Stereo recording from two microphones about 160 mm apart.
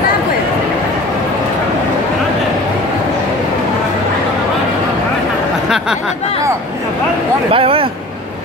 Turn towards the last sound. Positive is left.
turn(degrees=-35)  # may be behind; listen again after turning